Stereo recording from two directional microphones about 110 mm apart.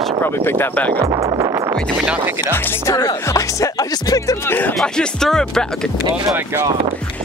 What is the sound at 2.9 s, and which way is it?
Speech, 30° left (ahead or behind).